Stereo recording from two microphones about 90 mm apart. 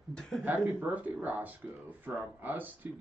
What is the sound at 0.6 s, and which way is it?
Speech, 20° right (ahead or behind).